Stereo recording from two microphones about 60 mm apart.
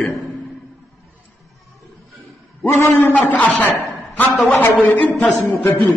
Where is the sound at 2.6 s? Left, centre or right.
Left.